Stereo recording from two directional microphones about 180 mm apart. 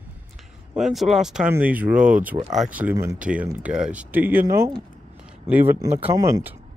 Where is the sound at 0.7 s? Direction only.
Centre (ahead or behind); by 2.9 s 15° right (ahead or behind).